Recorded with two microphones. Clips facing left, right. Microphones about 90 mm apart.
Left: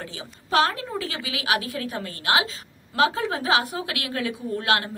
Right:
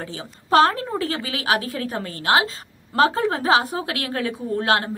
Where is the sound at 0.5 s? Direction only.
40° right (ahead or behind).